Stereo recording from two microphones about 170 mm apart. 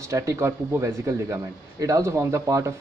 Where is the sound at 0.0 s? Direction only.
20° right (ahead or behind).